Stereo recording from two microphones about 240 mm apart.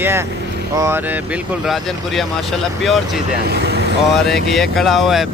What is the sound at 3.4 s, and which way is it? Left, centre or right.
Speech, right.